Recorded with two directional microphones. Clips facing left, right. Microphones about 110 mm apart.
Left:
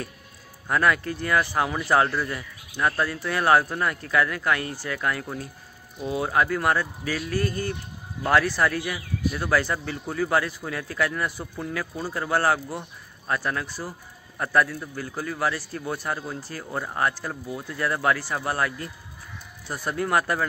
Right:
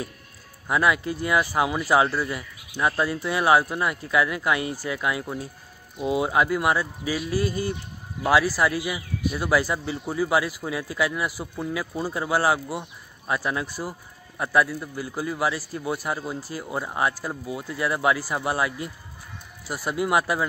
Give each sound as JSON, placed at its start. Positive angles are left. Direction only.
{"t": 0.7, "sound": "speech", "side_deg": -10}